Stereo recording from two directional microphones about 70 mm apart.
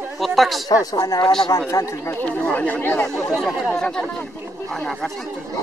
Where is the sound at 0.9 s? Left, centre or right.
Left.